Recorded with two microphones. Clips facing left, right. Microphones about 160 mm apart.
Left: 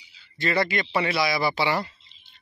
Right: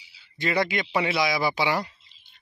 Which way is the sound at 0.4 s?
15° right (ahead or behind).